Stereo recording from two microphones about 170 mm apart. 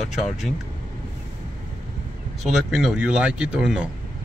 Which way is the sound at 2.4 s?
Centre (ahead or behind).